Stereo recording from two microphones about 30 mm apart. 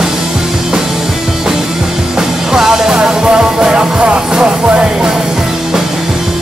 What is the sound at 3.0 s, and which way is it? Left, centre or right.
Music, right.